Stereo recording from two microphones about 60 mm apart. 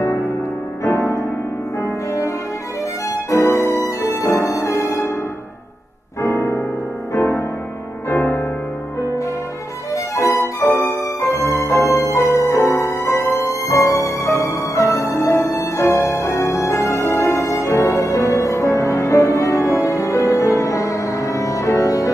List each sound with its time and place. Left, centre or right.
0.0 s music: left
3.3 s music: left
6.2 s music: left
7.2 s music: left
10.1 s violin: left
13.3 s music: left